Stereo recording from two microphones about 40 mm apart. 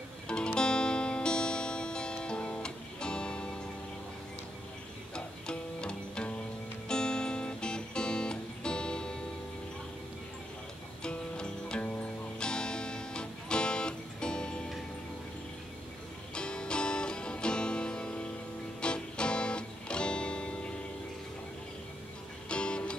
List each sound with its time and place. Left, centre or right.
0.6 s music: left
5.1 s music: left
11.0 s music: left
16.3 s music: left
22.5 s music: left